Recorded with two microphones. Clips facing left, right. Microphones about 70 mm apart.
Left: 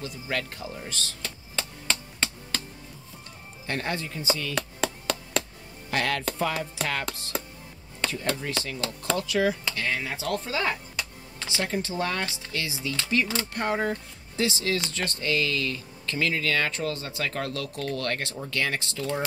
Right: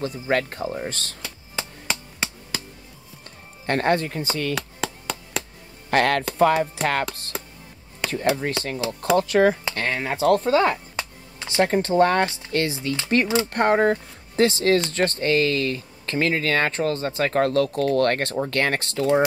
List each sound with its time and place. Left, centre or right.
0.0 s speech: right
1.2 s a sound: centre
3.6 s speech: right
4.6 s a sound: centre
5.9 s speech: right
8.4 s speech: right